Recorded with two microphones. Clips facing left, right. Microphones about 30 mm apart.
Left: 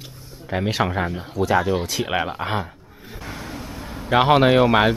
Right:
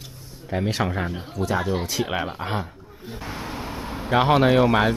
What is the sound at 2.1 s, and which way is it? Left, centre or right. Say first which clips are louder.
Speech: left 3 dB; centre.